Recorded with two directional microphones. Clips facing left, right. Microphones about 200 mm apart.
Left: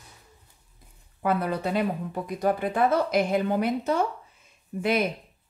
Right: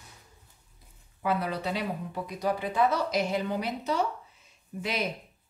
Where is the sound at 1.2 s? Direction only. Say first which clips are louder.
Left 4 dB; 50° left (ahead or behind).